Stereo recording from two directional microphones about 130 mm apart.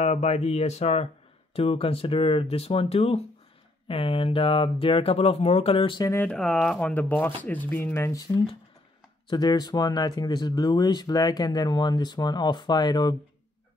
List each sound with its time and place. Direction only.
0.0 s speech: 60° left (ahead or behind); by 6.0 s 40° left (ahead or behind)
6.2 s speech: 5° left (ahead or behind); by 13.1 s 35° left (ahead or behind)